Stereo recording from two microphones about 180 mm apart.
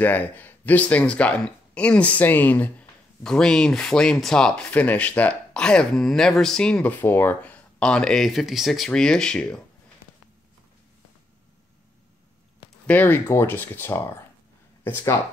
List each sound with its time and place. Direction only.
0.0 s speech: 10° left (ahead or behind)
12.8 s speech: 10° left (ahead or behind)